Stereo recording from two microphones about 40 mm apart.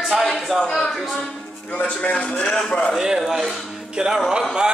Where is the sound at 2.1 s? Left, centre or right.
Left.